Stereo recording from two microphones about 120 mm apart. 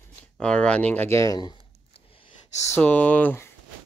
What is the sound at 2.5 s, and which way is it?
Speech, 25° left (ahead or behind).